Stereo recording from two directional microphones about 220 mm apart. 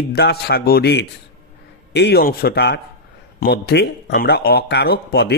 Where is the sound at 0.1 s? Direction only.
50° left (ahead or behind).